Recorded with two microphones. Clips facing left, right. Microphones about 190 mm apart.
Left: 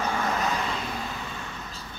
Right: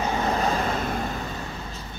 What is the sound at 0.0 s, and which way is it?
Vehicle, 25° right (ahead or behind).